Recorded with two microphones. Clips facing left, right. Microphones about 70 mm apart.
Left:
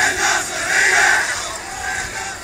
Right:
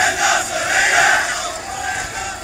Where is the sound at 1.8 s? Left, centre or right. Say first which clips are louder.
Even; left.